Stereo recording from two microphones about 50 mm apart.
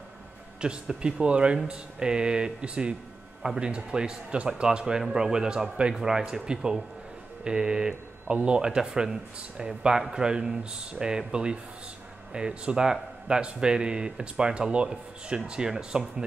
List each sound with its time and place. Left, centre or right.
0.6 s speech: centre